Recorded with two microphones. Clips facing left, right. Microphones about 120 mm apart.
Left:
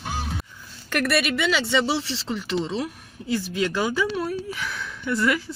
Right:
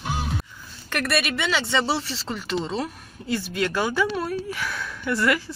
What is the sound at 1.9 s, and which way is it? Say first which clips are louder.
Speech: left 2 dB; 45° right (ahead or behind).